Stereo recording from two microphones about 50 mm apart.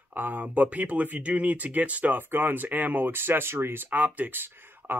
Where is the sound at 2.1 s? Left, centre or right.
Right.